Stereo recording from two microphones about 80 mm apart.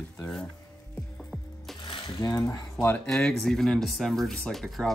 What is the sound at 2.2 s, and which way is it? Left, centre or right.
Coin, left.